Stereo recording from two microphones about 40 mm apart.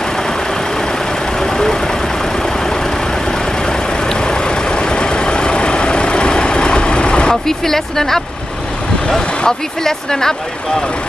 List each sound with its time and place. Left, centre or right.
1.4 s vehicle: centre
3.3 s vehicle: centre
7.4 s speech: centre
9.4 s speech: centre